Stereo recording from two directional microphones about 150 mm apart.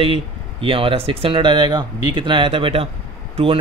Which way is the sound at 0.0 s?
35° right (ahead or behind).